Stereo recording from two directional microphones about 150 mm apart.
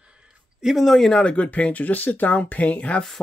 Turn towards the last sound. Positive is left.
turn(degrees=5)  # may be behind; listen again after turning